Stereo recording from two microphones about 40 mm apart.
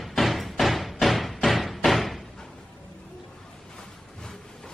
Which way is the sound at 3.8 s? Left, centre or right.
Centre.